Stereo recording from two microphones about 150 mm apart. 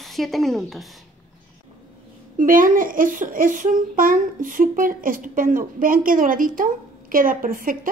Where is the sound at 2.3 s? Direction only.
65° right (ahead or behind).